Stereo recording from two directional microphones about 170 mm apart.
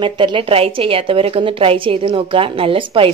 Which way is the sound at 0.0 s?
30° right (ahead or behind).